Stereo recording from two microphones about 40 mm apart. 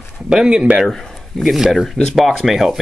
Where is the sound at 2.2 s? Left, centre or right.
Centre.